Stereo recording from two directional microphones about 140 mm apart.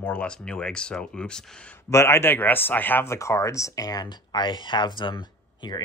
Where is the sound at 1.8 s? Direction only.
20° left (ahead or behind).